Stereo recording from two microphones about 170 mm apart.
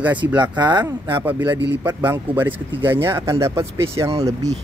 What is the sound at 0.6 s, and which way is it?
Speech, 25° right (ahead or behind).